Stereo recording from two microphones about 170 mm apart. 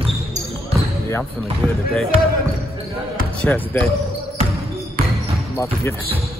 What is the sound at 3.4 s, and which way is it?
Speech, 10° left (ahead or behind).